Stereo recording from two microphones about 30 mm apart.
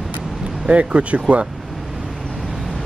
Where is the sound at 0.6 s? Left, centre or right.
Right.